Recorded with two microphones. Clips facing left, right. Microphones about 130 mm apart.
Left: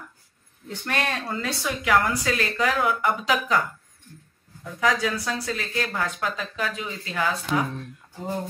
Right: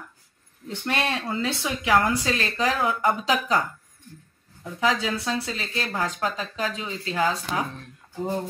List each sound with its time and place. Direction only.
0.8 s speech: 15° right (ahead or behind); by 3.6 s 35° right (ahead or behind)
4.7 s speech: 25° right (ahead or behind)
6.0 s speech: 35° right (ahead or behind)